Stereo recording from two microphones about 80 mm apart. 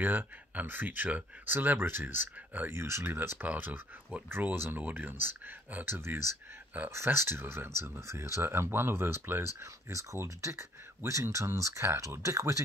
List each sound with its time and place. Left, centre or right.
0.0 s speech: right